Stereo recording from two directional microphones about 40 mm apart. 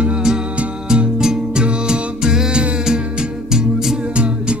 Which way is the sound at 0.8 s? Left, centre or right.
Right.